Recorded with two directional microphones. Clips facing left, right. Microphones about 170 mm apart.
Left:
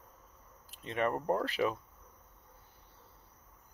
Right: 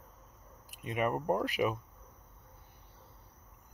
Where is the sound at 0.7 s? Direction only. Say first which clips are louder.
Even; 15° right (ahead or behind).